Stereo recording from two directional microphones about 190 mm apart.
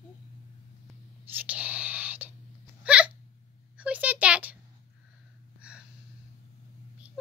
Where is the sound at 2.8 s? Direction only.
5° right (ahead or behind).